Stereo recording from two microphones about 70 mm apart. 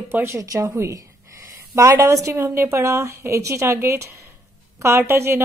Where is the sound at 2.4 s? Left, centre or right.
Right.